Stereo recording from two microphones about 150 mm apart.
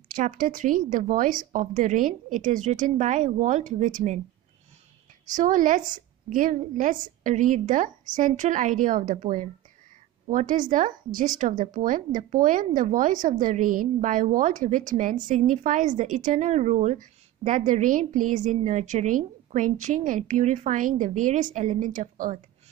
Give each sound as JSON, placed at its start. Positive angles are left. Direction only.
{"t": 0.1, "sound": "a woman's voice", "side_deg": -65}
{"t": 5.3, "sound": "a woman's voice", "side_deg": -60}